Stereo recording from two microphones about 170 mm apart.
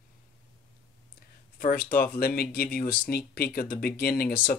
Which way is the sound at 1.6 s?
60° left (ahead or behind).